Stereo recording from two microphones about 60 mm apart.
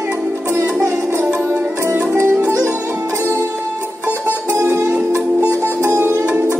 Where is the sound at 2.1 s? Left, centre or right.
Right.